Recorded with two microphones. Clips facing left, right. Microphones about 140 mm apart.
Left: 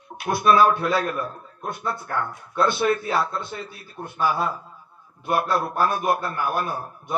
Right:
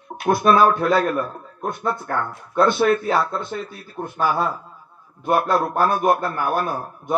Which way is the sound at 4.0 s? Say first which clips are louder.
Right 6 dB; 20° right (ahead or behind).